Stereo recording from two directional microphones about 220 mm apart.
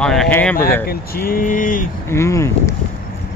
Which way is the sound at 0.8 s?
40° left (ahead or behind).